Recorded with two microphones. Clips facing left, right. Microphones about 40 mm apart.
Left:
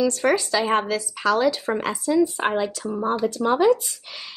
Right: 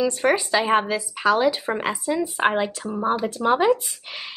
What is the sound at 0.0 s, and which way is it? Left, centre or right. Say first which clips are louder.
Speech: even; centre.